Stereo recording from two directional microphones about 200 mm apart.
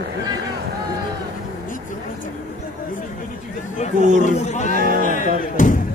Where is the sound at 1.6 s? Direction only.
40° left (ahead or behind).